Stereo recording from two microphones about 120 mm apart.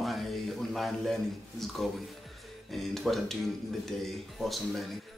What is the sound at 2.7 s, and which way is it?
Music, centre (ahead or behind).